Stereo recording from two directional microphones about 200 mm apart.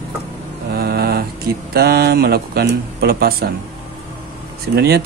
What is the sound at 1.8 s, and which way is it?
Speech, 50° right (ahead or behind).